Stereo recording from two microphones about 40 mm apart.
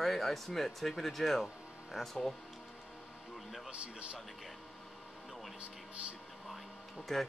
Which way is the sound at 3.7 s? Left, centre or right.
Right.